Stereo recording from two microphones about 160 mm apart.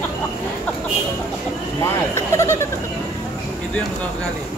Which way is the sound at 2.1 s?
15° left (ahead or behind).